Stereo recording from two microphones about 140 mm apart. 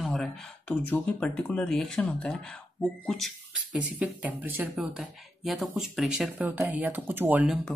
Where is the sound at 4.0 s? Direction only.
10° right (ahead or behind).